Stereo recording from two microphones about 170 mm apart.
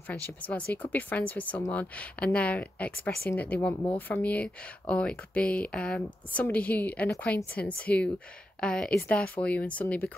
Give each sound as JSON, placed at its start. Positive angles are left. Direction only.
{"t": 0.1, "sound": "a woman's voice", "side_deg": 10}